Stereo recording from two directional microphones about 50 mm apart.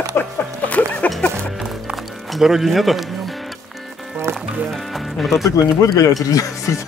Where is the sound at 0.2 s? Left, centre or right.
Left.